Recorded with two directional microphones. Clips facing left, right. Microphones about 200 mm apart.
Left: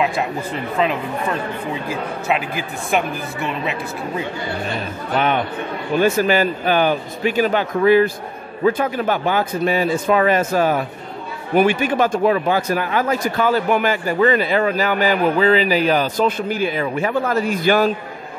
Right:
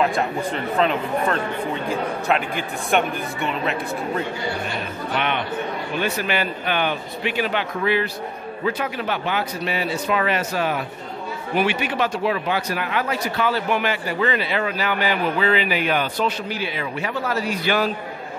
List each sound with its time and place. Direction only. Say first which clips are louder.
0.0 s speech: even; centre (ahead or behind)
5.1 s speech: left 5 dB; 40° left (ahead or behind)